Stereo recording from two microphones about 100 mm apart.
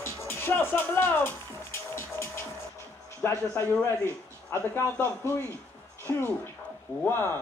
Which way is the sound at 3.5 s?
25° left (ahead or behind).